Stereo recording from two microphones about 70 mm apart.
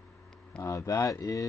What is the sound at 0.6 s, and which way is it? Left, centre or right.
Speech, left.